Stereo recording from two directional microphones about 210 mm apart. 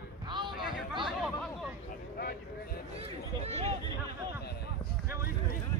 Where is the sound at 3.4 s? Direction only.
30° right (ahead or behind).